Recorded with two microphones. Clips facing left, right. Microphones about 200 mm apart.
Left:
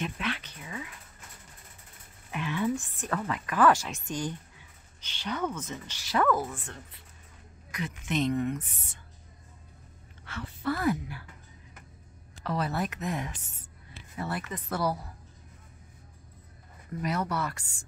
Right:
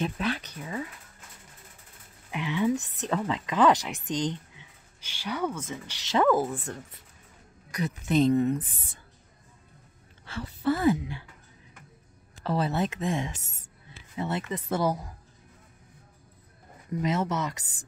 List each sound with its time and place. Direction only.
0.0 s a sound: 40° right (ahead or behind)
2.3 s a woman's voice: 15° right (ahead or behind)
6.0 s a woman's voice: 25° right (ahead or behind)
10.2 s a woman's voice: 30° right (ahead or behind)
12.4 s a woman's voice: 30° right (ahead or behind)
17.0 s a woman's voice: 25° right (ahead or behind)